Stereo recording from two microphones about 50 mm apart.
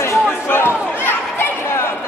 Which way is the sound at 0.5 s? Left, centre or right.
Left.